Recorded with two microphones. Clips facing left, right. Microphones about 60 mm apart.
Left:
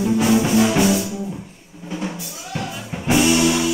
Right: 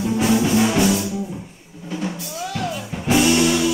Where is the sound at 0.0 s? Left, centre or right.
Centre.